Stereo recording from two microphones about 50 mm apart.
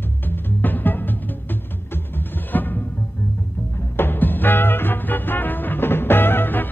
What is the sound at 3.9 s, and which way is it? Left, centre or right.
Music, left.